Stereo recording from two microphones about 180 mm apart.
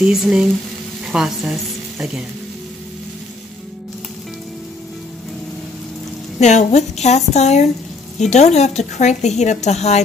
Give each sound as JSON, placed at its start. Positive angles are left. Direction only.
{"t": 0.0, "sound": "speech", "side_deg": -5}
{"t": 6.4, "sound": "a woman's voice", "side_deg": 40}